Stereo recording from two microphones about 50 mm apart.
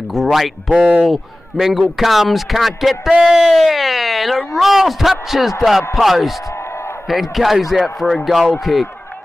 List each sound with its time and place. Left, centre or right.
0.1 s a man's voice: centre
0.7 s speech: right
1.0 s a man's voice: centre